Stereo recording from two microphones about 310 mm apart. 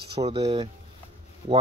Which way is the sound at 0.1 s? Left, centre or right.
Centre.